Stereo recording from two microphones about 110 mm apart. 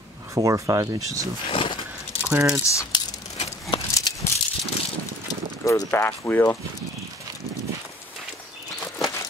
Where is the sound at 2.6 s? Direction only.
30° left (ahead or behind).